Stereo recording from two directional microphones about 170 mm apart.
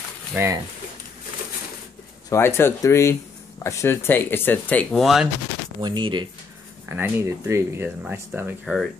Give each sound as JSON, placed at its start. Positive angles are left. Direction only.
{"t": 0.3, "sound": "speech", "side_deg": -15}
{"t": 2.2, "sound": "speech", "side_deg": 15}
{"t": 5.8, "sound": "speech", "side_deg": -25}
{"t": 6.9, "sound": "speech", "side_deg": -15}